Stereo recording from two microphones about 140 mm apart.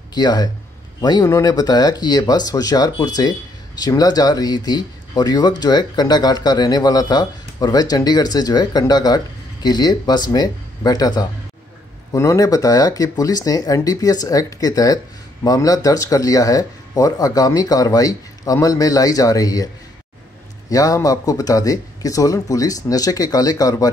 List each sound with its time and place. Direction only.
0.1 s speech: 30° left (ahead or behind)
20.7 s speech: 25° left (ahead or behind)